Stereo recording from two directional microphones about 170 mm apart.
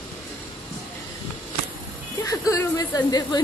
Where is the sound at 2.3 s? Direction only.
20° left (ahead or behind).